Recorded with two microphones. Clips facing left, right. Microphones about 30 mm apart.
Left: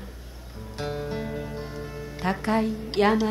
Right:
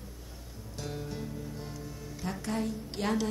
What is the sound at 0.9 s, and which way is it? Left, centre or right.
Music, left.